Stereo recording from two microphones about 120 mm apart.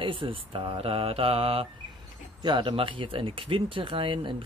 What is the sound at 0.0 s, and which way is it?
Speech, 45° right (ahead or behind).